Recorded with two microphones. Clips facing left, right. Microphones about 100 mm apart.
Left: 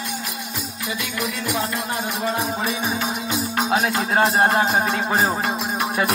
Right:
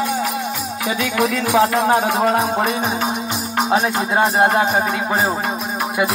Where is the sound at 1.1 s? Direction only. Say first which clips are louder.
Right 10 dB; 90° right.